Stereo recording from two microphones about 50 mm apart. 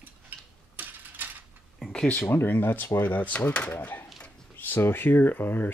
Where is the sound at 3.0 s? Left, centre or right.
Left.